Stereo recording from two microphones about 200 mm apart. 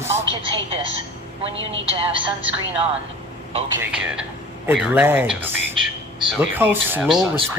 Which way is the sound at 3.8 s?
5° right (ahead or behind).